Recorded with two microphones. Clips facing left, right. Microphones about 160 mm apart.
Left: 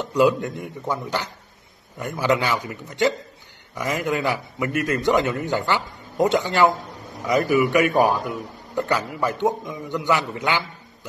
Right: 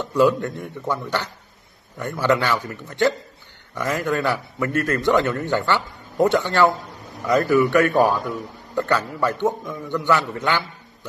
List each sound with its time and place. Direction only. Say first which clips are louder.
0.0 s a man's voice: right 1 dB; 15° left (ahead or behind)